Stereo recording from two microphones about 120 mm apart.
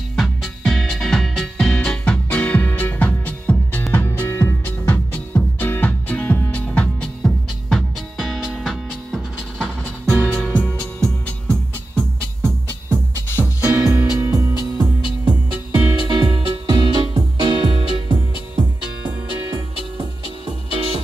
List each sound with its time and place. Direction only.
0.1 s music: centre (ahead or behind)
10.2 s music: 15° left (ahead or behind)
13.4 s music: 15° right (ahead or behind)
15.2 s music: 10° right (ahead or behind)
16.2 s music: 40° right (ahead or behind)
20.7 s music: 45° right (ahead or behind)